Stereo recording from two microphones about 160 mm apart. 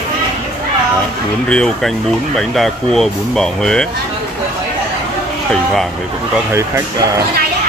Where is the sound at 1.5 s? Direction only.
5° left (ahead or behind).